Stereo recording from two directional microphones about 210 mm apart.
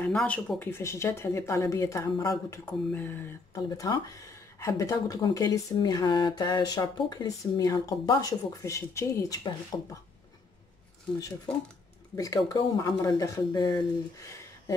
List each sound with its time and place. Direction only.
0.0 s speech: 5° left (ahead or behind)
12.2 s speech: 15° left (ahead or behind)